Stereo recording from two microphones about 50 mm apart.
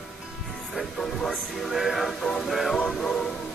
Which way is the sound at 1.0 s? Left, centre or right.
Centre.